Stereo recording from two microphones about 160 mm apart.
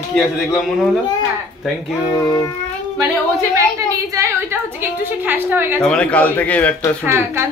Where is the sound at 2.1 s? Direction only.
20° left (ahead or behind).